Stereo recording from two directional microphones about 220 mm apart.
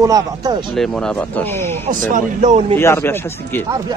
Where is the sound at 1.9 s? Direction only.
35° right (ahead or behind).